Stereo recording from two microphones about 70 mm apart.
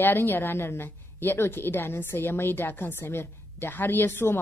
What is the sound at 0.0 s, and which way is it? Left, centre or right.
A woman's voice, left.